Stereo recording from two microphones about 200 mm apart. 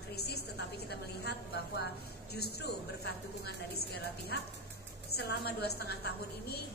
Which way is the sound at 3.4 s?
55° left (ahead or behind).